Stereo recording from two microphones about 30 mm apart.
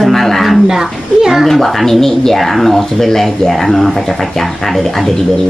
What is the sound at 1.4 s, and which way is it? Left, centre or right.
Speech, centre.